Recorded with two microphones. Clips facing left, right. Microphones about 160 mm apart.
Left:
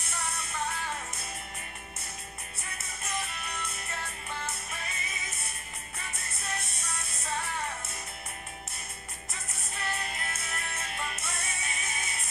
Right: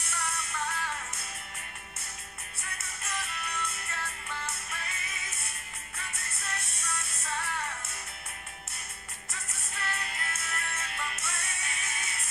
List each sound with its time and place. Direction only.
0.0 s music: 20° left (ahead or behind)
3.0 s music: 20° left (ahead or behind)
6.4 s music: 20° left (ahead or behind)
9.3 s music: 20° left (ahead or behind)